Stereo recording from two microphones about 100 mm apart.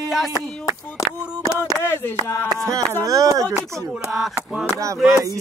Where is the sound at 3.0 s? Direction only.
35° right (ahead or behind).